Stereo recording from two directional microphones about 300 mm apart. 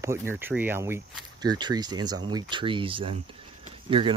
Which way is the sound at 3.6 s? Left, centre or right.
Centre.